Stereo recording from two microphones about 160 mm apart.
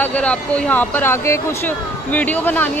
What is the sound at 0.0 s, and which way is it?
Speech, 10° left (ahead or behind).